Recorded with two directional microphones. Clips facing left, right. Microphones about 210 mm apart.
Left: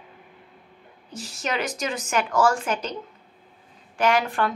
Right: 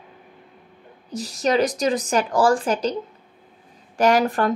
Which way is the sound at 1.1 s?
40° right (ahead or behind).